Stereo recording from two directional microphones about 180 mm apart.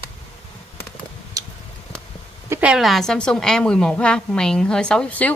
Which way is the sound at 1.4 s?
20° right (ahead or behind).